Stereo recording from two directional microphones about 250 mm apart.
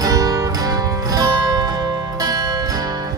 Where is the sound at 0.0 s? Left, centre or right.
Centre.